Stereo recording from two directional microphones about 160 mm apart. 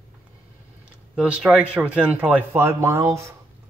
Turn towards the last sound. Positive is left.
turn(degrees=-20)  # may be behind; listen again after turning